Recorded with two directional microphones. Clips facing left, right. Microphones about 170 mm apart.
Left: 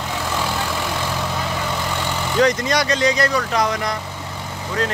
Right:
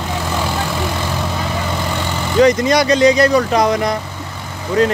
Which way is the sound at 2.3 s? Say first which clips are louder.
Right 6 dB; 10° right (ahead or behind).